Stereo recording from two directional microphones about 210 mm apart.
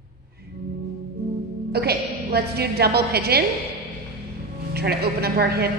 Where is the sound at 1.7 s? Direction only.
50° right (ahead or behind).